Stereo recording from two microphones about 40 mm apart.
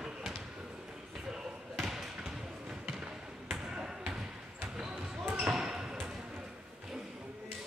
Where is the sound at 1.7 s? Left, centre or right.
Centre.